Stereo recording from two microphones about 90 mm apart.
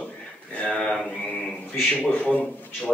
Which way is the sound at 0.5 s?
10° left (ahead or behind).